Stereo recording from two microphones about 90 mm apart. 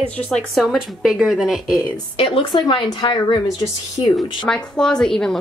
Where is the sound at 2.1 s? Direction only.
85° left; by 4.1 s 70° left (ahead or behind).